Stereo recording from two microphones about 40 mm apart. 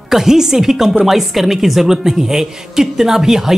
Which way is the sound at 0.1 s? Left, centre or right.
Centre.